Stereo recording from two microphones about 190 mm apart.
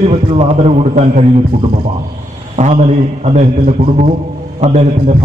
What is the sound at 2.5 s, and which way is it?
A man's voice, 35° right (ahead or behind).